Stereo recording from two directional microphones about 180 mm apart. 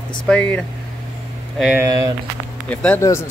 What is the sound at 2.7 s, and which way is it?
Speech, 5° left (ahead or behind).